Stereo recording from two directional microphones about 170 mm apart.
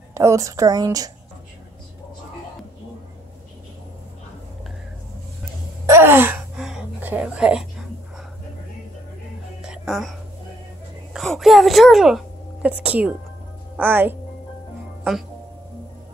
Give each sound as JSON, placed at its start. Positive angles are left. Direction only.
{"t": 0.1, "sound": "a woman's voice", "side_deg": -15}
{"t": 5.9, "sound": "gasp", "side_deg": -15}
{"t": 9.6, "sound": "music", "side_deg": -5}
{"t": 11.1, "sound": "a woman's voice", "side_deg": 0}